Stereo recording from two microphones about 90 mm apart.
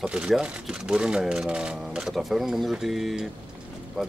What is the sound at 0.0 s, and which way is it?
Speech, 10° right (ahead or behind).